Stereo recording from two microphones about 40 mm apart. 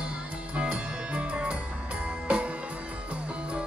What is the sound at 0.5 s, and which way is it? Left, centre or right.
Music, right.